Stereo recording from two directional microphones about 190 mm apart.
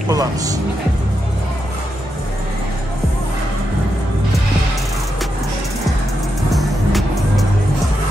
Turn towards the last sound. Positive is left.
turn(degrees=0)  # may be behind; listen again after turning